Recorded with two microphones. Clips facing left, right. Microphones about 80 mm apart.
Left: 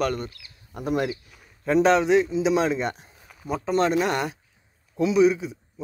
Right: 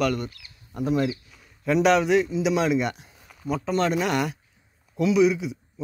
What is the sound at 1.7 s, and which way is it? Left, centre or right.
Speech, left.